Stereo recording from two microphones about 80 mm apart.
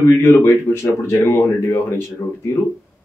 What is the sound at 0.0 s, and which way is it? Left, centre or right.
Speech, left.